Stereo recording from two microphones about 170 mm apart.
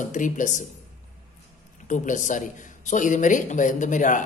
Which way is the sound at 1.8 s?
50° left (ahead or behind).